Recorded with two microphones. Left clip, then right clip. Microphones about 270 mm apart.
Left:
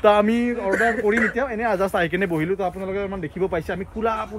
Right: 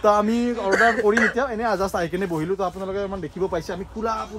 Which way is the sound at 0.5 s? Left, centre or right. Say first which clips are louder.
Right 4 dB; right.